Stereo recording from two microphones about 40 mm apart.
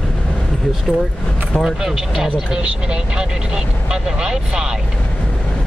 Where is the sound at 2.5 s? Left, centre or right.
Right.